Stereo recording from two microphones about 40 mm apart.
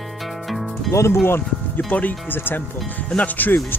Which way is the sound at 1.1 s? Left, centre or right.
Left.